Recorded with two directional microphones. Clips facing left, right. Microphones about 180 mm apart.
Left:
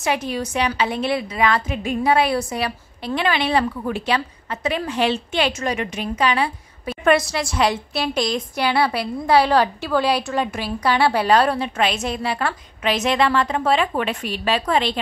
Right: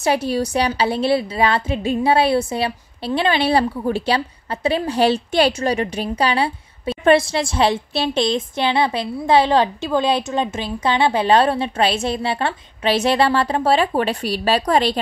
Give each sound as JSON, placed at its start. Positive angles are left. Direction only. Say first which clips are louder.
{"t": 0.0, "sound": "a woman's voice", "louder": "right 4 dB", "side_deg": -35}